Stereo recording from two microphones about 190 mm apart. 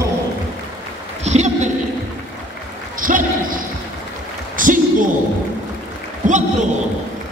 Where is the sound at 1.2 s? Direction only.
35° right (ahead or behind).